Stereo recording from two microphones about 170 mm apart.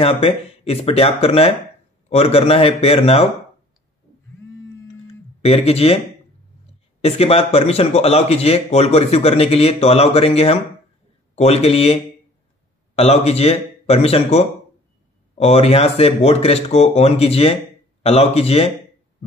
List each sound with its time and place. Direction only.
0.0 s a man's voice: 35° left (ahead or behind)
5.4 s a man's voice: 35° left (ahead or behind)
7.0 s a man's voice: 35° left (ahead or behind)